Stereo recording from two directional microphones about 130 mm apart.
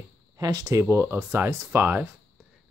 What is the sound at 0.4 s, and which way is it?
Speech, 30° right (ahead or behind).